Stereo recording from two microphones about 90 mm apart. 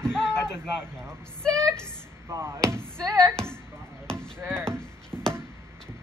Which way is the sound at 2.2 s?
35° right (ahead or behind).